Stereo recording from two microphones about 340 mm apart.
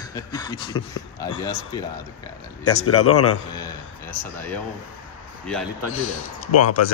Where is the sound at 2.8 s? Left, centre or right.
Left.